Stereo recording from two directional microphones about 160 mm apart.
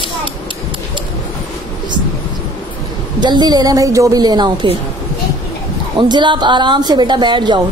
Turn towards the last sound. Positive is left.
turn(degrees=-30)  # may be behind; listen again after turning